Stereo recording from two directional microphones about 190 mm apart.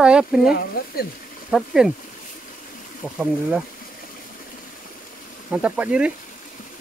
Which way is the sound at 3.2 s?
5° right (ahead or behind).